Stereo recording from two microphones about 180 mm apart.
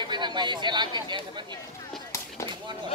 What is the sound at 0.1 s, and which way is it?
Speech, 25° right (ahead or behind).